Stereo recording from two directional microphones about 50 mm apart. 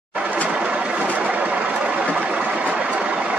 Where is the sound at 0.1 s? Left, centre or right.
Right.